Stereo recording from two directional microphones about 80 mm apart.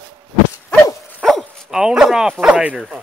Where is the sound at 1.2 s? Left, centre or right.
Centre.